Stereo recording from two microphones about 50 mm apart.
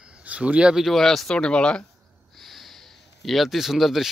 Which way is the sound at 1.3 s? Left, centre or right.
Centre.